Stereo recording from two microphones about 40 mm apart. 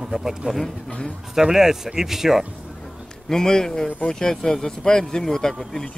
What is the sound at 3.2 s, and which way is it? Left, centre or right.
Speech, centre.